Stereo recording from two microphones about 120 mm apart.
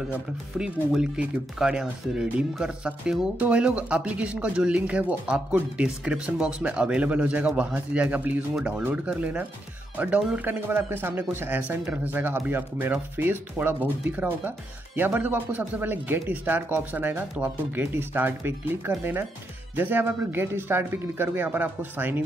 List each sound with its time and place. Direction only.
0.1 s speech: 5° right (ahead or behind)